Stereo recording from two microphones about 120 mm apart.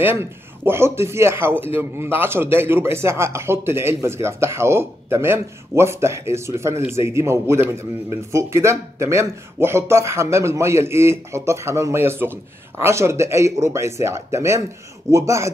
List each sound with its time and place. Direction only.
0.0 s speech: 20° right (ahead or behind)